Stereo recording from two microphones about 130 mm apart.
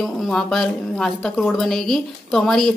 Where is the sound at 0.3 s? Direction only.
5° left (ahead or behind).